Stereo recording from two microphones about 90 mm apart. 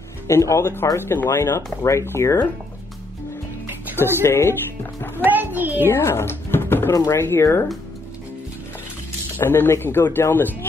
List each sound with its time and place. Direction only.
0.3 s speech: 35° left (ahead or behind)
3.6 s music: 25° right (ahead or behind)
4.0 s a man's voice: 25° left (ahead or behind)
5.2 s a child's voice: 20° right (ahead or behind)
5.9 s a sound: 25° left (ahead or behind)
6.9 s speech: 35° left (ahead or behind)
9.4 s a man's voice: 25° left (ahead or behind)